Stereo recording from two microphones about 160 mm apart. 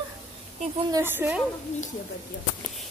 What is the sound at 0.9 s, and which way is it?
Speech, 15° right (ahead or behind).